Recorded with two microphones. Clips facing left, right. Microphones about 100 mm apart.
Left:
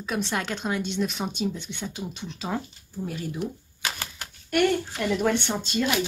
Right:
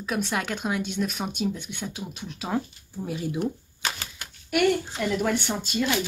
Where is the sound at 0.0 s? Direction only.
5° right (ahead or behind).